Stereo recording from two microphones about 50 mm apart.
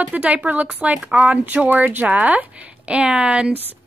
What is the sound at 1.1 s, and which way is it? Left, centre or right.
Speech, centre.